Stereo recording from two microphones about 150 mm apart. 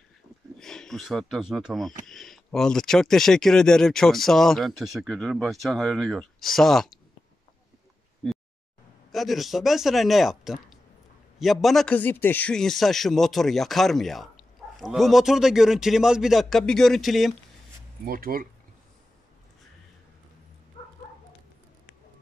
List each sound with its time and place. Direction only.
0.6 s speech: 5° left (ahead or behind)
9.1 s speech: centre (ahead or behind)
18.0 s speech: 70° right (ahead or behind)
20.8 s dog: 40° left (ahead or behind)